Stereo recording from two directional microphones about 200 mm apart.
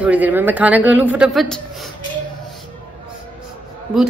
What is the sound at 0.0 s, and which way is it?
Speech, 10° right (ahead or behind).